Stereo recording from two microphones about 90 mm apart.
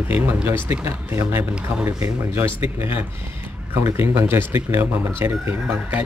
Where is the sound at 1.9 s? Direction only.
35° right (ahead or behind).